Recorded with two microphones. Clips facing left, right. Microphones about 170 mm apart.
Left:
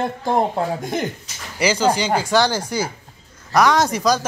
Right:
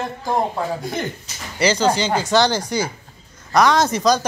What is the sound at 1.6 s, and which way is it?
Speech, 10° left (ahead or behind).